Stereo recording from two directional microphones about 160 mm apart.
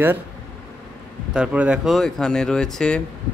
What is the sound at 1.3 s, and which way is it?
Speech, 5° right (ahead or behind).